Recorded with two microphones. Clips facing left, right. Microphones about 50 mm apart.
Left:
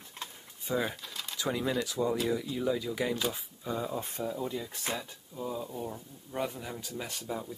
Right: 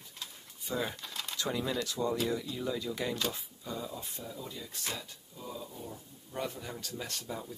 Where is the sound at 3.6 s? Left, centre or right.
Left.